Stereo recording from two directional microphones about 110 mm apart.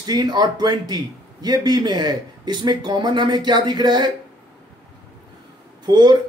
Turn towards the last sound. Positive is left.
turn(degrees=-40)  # may be behind; listen again after turning